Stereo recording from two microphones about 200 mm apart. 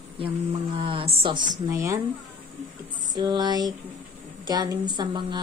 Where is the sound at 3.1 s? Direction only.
20° right (ahead or behind).